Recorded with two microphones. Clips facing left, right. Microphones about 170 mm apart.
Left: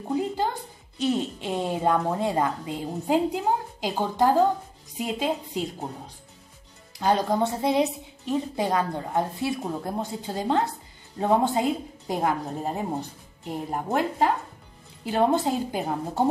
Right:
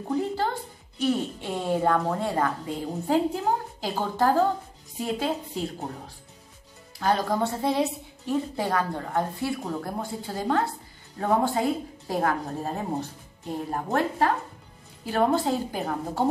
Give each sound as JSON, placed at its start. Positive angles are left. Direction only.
{"t": 0.9, "sound": "a woman's voice", "side_deg": 20}